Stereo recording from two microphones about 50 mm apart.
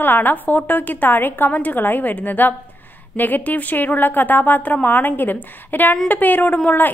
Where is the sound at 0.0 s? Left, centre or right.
Left.